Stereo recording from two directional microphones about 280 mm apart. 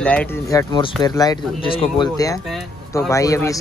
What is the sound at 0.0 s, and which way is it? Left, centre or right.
Speech, centre.